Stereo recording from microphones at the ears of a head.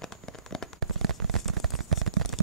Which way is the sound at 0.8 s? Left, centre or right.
Right.